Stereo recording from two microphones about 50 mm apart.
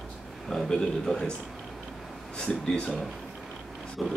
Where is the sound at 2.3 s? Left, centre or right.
Centre.